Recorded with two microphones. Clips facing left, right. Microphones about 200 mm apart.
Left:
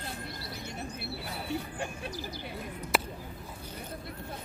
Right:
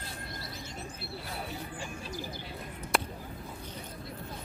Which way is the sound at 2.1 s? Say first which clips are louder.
Even; 50° right (ahead or behind).